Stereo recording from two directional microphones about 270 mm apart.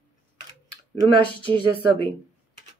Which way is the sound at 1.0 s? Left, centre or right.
Centre.